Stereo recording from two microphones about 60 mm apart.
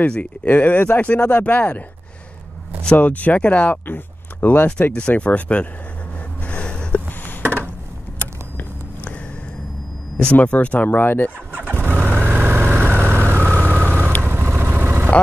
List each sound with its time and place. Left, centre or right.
0.0 s speech: left
3.0 s speech: left
4.9 s speech: left
6.4 s a sound: centre
7.2 s a sound: left
10.3 s speech: left
11.7 s vehicle: right